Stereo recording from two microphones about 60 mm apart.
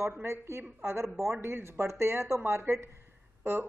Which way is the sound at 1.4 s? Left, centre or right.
Right.